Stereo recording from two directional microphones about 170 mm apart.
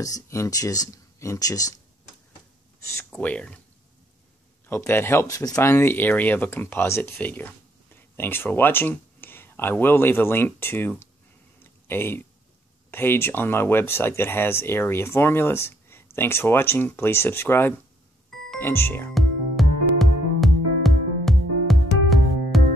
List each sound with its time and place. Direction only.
0.0 s speech: 20° left (ahead or behind)
3.1 s speech: 5° left (ahead or behind)
4.6 s speech: 15° left (ahead or behind)
11.6 s a sound: 15° left (ahead or behind)
12.9 s speech: 15° left (ahead or behind)
19.1 s music: centre (ahead or behind)